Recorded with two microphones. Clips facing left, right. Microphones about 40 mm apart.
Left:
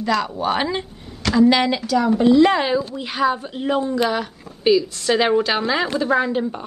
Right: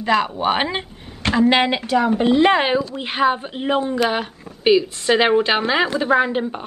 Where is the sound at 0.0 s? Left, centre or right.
Right.